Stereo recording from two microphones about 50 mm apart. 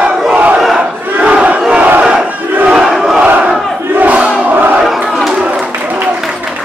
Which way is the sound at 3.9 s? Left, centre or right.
Right.